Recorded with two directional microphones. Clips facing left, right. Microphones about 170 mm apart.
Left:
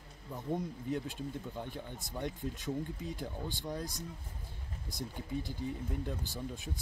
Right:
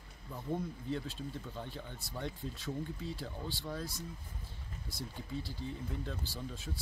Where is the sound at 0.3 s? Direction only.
15° left (ahead or behind).